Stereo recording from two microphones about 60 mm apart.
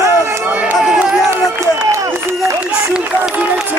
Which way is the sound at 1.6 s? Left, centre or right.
Right.